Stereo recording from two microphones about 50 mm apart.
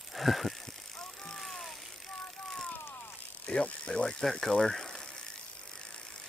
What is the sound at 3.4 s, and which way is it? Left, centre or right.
Speech, left.